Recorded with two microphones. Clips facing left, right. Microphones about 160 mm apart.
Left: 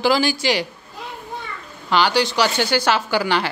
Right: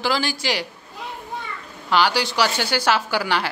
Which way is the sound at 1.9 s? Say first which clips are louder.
Left 2 dB; 5° right (ahead or behind).